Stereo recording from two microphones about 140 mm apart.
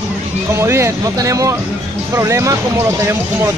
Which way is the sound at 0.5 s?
20° right (ahead or behind).